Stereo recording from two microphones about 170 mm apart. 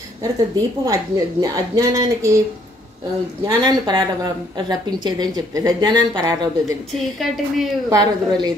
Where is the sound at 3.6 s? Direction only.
25° right (ahead or behind).